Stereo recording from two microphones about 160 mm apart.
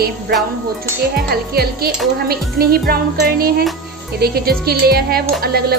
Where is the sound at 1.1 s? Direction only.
75° right (ahead or behind).